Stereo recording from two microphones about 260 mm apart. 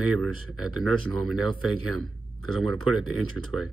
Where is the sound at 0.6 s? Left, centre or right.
Right.